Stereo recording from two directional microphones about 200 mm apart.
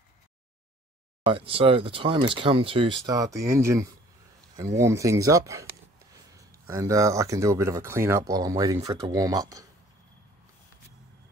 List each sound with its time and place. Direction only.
1.2 s speech: 30° right (ahead or behind)
4.6 s a sound: 15° right (ahead or behind)
6.7 s speech: 15° right (ahead or behind)